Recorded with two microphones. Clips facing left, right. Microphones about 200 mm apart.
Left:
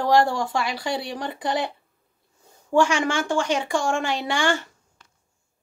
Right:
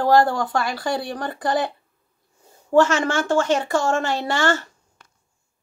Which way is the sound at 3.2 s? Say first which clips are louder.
Right 4 dB; 15° left (ahead or behind).